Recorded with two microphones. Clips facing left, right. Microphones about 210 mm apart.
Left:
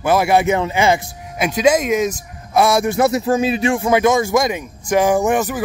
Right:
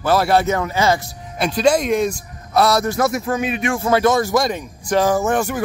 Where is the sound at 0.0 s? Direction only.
15° left (ahead or behind).